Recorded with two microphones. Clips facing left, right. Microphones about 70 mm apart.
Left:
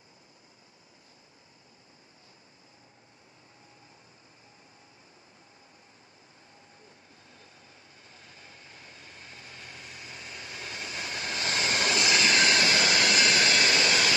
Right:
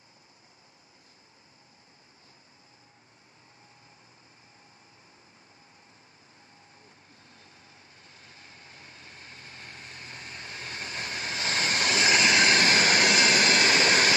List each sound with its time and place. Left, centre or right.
8.1 s vehicle: right